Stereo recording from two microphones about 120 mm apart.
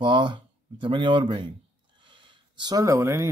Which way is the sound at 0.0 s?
40° right (ahead or behind).